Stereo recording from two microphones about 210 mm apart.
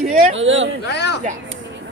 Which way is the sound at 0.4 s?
65° right (ahead or behind).